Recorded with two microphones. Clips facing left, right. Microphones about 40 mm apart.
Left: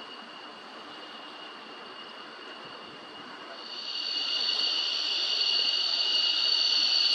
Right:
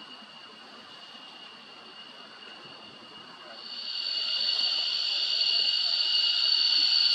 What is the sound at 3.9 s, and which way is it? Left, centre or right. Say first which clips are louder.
Vehicle: even; centre.